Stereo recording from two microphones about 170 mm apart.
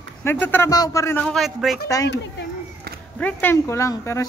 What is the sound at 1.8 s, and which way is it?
Speech, 20° left (ahead or behind).